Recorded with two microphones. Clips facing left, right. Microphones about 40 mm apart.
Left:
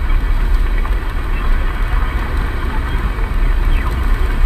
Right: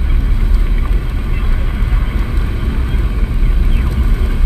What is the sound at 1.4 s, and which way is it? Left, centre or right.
Vehicle, centre.